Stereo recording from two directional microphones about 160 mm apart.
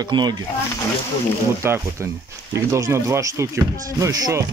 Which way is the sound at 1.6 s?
15° right (ahead or behind).